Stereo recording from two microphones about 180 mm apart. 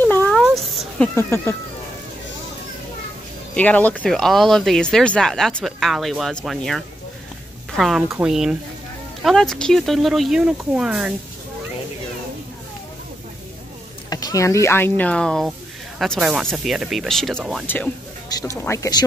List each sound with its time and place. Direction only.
0.0 s a sound: 10° left (ahead or behind)
0.4 s cat: centre (ahead or behind)
3.5 s speech: 10° left (ahead or behind)
14.1 s speech: 20° left (ahead or behind); by 17.6 s centre (ahead or behind)
18.3 s speech: 15° left (ahead or behind)